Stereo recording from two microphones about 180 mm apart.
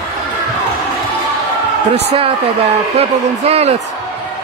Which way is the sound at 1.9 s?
35° right (ahead or behind).